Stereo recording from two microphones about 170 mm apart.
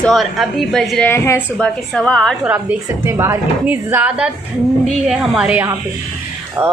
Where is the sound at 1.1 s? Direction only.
15° left (ahead or behind).